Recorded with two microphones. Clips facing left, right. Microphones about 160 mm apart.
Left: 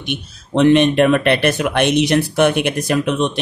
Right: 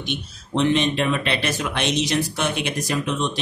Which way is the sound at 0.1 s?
60° left (ahead or behind).